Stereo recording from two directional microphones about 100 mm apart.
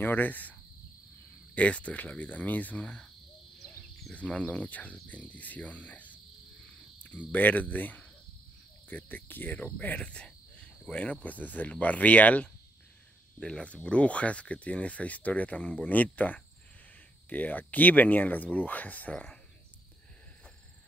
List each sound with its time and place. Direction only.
0.0 s speech: 20° left (ahead or behind)
4.1 s speech: 15° left (ahead or behind)
7.3 s speech: 15° left (ahead or behind)
9.8 s cricket: 15° left (ahead or behind)
11.2 s speech: 15° left (ahead or behind)